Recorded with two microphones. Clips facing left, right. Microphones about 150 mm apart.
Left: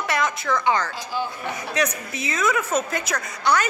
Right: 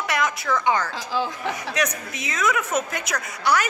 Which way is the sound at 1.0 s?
90° right.